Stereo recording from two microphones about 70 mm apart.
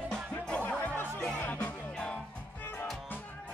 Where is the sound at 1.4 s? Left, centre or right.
Left.